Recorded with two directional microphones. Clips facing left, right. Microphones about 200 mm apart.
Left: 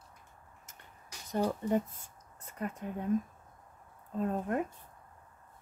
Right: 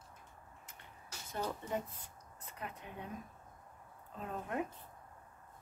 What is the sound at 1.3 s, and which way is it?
Speech, 40° left (ahead or behind).